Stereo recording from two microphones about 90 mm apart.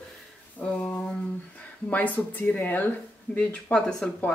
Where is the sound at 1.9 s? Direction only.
15° left (ahead or behind).